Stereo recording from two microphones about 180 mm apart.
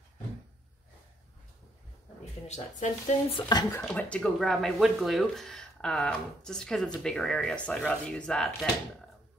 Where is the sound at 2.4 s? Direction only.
40° left (ahead or behind).